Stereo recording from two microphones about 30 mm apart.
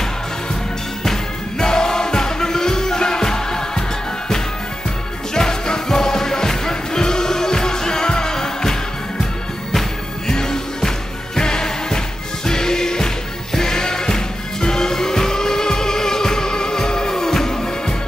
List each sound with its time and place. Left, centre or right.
1.0 s music: centre
5.3 s music: left